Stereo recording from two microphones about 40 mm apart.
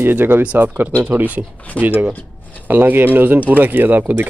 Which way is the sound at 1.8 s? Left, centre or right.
Right.